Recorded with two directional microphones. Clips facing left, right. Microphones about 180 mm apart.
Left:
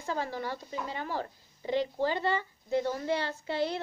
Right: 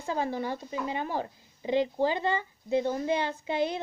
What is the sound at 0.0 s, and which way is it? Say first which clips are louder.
A woman's voice: right 3 dB; 20° right (ahead or behind).